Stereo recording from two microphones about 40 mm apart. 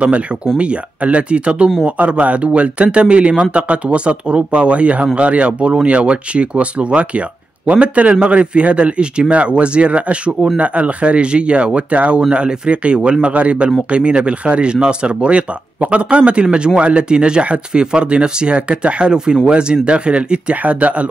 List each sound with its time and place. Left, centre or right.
0.6 s speech: right